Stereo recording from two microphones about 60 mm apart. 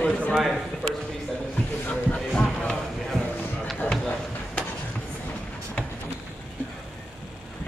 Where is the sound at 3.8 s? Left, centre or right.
Left.